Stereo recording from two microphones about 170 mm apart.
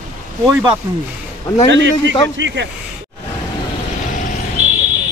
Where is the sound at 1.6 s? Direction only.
90° right.